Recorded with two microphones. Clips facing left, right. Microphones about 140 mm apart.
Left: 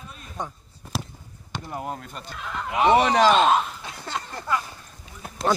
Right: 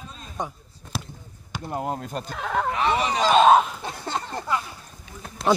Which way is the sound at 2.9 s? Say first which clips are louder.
Left 5 dB; 65° left (ahead or behind).